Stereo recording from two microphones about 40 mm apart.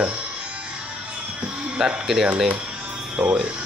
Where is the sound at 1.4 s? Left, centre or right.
Right.